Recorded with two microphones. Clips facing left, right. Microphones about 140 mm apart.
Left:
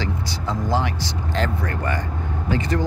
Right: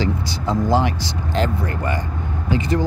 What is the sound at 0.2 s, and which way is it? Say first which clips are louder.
Speech: right 5 dB; 15° right (ahead or behind).